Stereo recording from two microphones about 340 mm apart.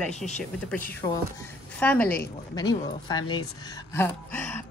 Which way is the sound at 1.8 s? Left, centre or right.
Centre.